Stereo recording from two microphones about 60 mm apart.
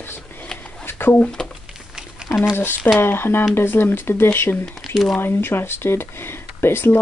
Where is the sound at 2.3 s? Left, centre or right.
Left.